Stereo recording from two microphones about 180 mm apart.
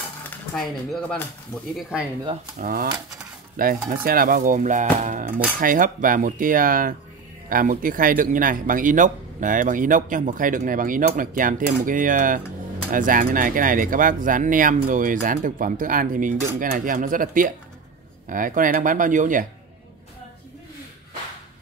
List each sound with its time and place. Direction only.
0.3 s speech: 10° left (ahead or behind)
1.8 s speech: 5° right (ahead or behind)
2.6 s speech: 50° right (ahead or behind)